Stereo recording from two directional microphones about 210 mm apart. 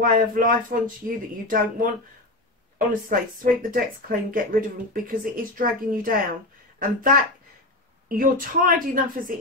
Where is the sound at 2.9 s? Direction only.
40° right (ahead or behind).